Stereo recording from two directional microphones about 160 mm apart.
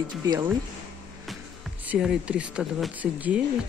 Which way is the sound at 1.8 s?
5° right (ahead or behind).